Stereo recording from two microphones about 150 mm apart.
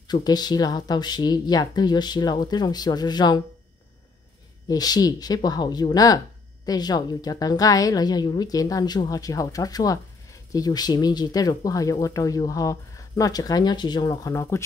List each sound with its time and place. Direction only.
0.1 s speech: 25° left (ahead or behind)
4.6 s speech: 25° left (ahead or behind)